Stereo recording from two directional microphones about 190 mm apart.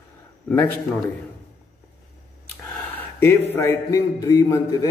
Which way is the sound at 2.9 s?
10° left (ahead or behind).